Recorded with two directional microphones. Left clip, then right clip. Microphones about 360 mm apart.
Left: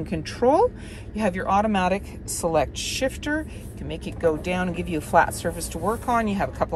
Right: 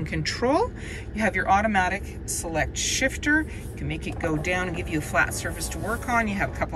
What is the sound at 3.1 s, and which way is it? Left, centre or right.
A woman's voice, centre.